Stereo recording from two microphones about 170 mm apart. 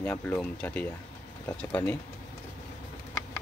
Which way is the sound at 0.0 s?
10° left (ahead or behind).